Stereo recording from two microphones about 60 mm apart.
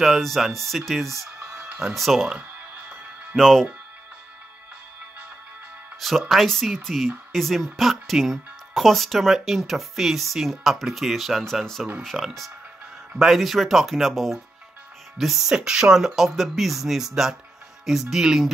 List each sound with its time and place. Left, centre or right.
0.0 s speech: centre
1.4 s music: right
2.0 s speech: centre
3.3 s speech: centre
5.9 s speech: centre